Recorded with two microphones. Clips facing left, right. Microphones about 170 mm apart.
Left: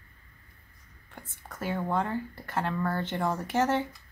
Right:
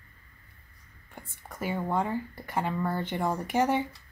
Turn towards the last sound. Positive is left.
turn(degrees=-15)  # may be behind; listen again after turning